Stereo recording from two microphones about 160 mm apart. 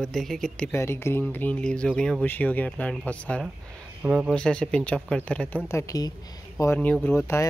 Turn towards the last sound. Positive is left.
turn(degrees=15)  # may be behind; listen again after turning